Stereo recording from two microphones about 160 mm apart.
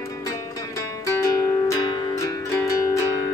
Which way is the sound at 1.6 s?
20° left (ahead or behind).